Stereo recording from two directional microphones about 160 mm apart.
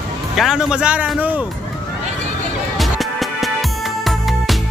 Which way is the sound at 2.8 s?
Centre (ahead or behind).